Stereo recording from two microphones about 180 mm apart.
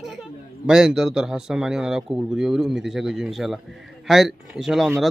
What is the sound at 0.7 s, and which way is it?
Speech, 5° right (ahead or behind).